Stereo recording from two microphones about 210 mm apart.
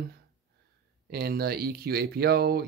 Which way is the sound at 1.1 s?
50° right (ahead or behind).